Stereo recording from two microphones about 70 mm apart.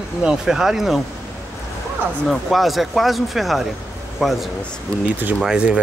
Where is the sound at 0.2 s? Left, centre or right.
Centre.